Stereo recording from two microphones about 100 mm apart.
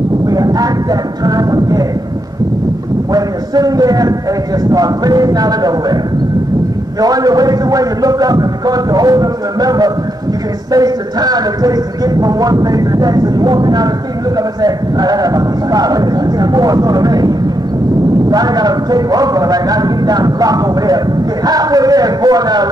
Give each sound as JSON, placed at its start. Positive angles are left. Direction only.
{"t": 0.3, "sound": "vehicle", "side_deg": -40}
{"t": 1.2, "sound": "speech", "side_deg": -40}
{"t": 3.1, "sound": "speech", "side_deg": -40}
{"t": 7.0, "sound": "speech", "side_deg": -40}